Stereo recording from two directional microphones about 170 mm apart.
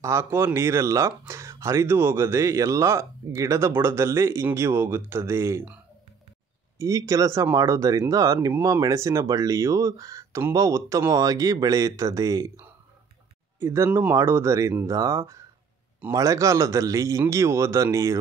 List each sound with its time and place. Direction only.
0.0 s speech: 15° right (ahead or behind)
6.8 s speech: 20° right (ahead or behind)